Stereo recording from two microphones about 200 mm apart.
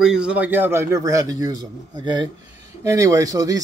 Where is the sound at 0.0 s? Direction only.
5° right (ahead or behind).